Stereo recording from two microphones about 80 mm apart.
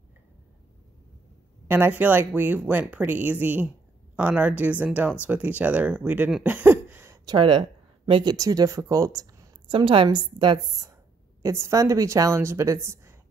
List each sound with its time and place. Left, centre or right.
1.7 s speech: right
6.4 s a sound: right
7.2 s speech: right
8.4 s speech: right
9.7 s a woman's voice: right
11.4 s a woman's voice: right